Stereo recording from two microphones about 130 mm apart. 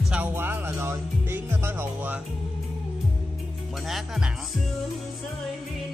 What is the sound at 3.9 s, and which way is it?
Speech, 5° right (ahead or behind).